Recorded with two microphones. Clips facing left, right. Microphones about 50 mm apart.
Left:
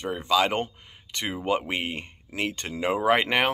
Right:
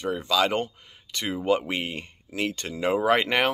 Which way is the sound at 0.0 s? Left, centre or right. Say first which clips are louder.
Even; left.